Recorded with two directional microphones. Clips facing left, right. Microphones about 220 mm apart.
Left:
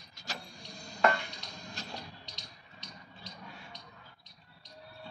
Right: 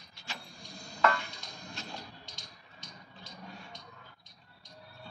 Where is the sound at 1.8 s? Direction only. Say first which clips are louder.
Even; 35° left (ahead or behind).